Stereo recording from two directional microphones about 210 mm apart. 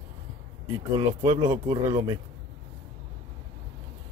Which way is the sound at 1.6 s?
15° right (ahead or behind).